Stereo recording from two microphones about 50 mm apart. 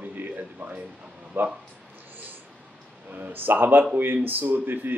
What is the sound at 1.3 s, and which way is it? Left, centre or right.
Speech, right.